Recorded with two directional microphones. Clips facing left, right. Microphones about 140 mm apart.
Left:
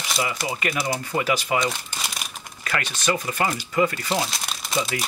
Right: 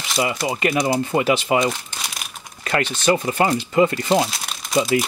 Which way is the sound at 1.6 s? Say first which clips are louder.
Right 4 dB; centre (ahead or behind).